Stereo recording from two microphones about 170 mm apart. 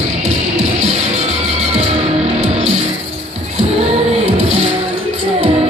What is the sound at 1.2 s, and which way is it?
Music, 40° right (ahead or behind).